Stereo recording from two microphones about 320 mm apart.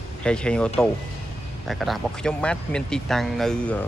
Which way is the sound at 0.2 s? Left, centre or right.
Centre.